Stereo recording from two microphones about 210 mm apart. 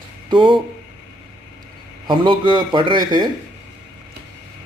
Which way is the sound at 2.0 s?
25° right (ahead or behind).